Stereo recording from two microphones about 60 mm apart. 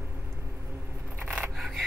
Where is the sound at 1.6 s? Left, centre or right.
Centre.